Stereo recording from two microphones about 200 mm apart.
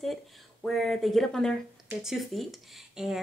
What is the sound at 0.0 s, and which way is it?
Speech, centre (ahead or behind).